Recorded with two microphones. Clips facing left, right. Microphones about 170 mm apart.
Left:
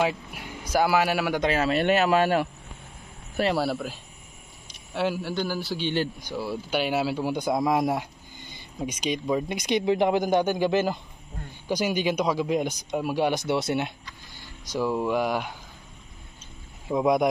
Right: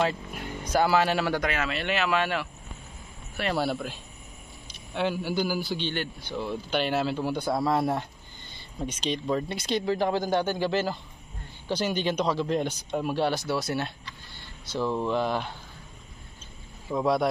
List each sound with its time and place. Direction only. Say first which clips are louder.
0.0 s speech: left 1 dB; 10° left (ahead or behind)
1.4 s speech: left 6 dB; 35° left (ahead or behind)
3.5 s a man's voice: left 1 dB; 5° left (ahead or behind)
16.9 s a man's voice: left 3 dB; 15° left (ahead or behind)